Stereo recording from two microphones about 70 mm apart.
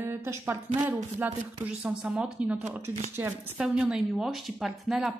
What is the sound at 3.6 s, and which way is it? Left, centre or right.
A woman's voice, centre.